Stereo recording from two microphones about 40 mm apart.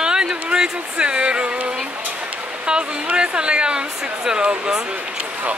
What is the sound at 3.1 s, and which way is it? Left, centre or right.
Speech, right.